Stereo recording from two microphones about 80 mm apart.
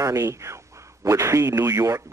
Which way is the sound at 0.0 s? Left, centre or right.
Right.